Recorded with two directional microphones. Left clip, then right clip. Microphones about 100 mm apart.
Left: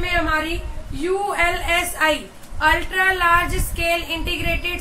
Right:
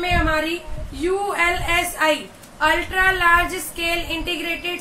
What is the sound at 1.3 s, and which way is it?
A woman's voice, 5° left (ahead or behind).